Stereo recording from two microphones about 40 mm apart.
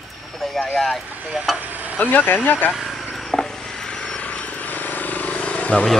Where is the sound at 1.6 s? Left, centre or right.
Right.